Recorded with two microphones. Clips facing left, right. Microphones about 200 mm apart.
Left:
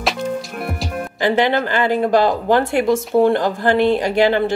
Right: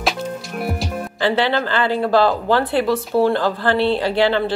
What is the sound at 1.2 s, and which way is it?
Speech, 15° left (ahead or behind).